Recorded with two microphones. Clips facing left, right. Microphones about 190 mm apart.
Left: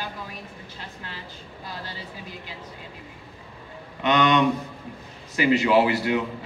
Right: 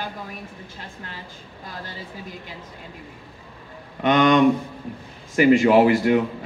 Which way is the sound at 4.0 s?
50° right (ahead or behind).